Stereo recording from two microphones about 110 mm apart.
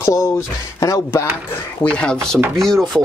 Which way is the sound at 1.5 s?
10° left (ahead or behind).